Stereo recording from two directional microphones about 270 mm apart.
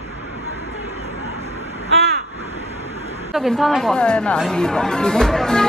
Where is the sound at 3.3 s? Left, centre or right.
Centre.